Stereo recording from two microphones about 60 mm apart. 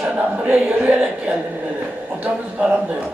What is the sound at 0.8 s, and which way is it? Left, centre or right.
A man's voice, centre.